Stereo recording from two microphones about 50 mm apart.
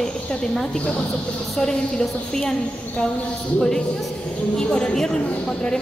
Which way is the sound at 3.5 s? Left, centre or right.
Centre.